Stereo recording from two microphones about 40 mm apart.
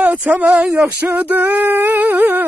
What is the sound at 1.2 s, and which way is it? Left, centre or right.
Female singing, right.